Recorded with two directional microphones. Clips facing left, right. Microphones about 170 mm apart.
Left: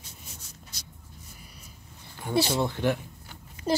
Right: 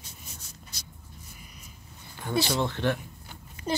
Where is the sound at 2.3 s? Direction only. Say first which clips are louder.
Left 2 dB; 30° left (ahead or behind).